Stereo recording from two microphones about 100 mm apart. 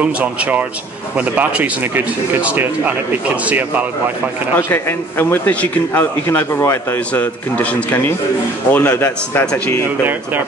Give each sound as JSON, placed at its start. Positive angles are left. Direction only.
{"t": 0.0, "sound": "speech", "side_deg": -15}
{"t": 4.6, "sound": "a man's voice", "side_deg": 25}